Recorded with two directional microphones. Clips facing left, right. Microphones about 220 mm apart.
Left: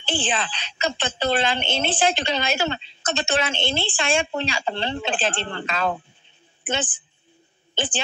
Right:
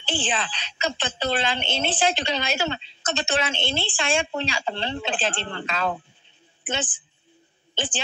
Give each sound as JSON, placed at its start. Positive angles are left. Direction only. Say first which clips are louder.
{"t": 0.0, "sound": "a woman's voice", "louder": "left 2 dB", "side_deg": 50}